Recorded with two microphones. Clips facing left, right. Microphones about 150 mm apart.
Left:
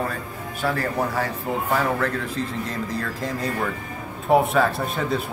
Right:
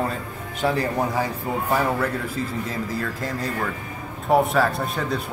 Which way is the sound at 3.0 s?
Centre (ahead or behind).